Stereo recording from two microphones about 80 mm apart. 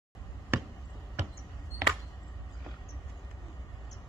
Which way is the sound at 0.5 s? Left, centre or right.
Right.